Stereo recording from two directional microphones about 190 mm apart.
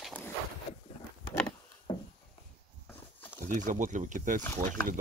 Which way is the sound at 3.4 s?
40° right (ahead or behind).